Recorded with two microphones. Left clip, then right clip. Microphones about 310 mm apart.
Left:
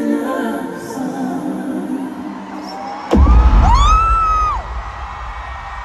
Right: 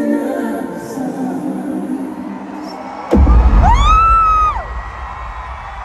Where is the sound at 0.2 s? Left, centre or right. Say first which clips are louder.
Even; centre.